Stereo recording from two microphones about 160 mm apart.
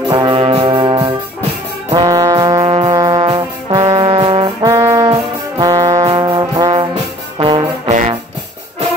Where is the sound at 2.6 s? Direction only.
35° right (ahead or behind).